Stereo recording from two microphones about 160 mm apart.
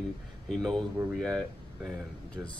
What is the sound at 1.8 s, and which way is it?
Speech, 5° left (ahead or behind).